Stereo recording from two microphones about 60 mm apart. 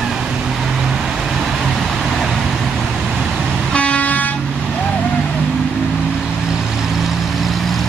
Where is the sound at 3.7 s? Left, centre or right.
Centre.